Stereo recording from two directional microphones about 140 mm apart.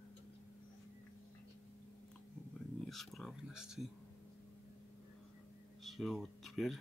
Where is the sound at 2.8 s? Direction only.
Centre (ahead or behind).